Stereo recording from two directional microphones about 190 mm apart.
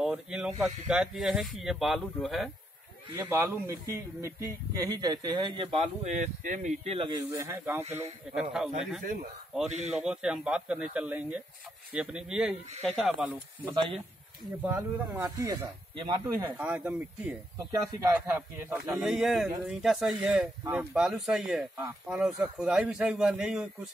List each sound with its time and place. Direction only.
0.0 s speech: 5° right (ahead or behind)
3.2 s speech: 15° right (ahead or behind); by 7.1 s 35° right (ahead or behind)
7.1 s speech: 20° right (ahead or behind)
9.0 s speech: 45° right (ahead or behind)
9.9 s speech: 5° right (ahead or behind)
13.7 s speech: 30° right (ahead or behind)
14.6 s speech: 15° right (ahead or behind)
16.5 s speech: 5° right (ahead or behind)
17.6 s speech: 20° right (ahead or behind)